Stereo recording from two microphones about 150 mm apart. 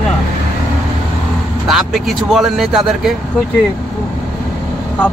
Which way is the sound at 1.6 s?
Centre (ahead or behind).